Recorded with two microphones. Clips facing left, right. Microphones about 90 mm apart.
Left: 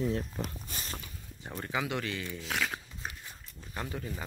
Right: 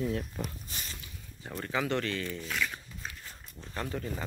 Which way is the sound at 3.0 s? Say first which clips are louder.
Left 1 dB; 15° left (ahead or behind).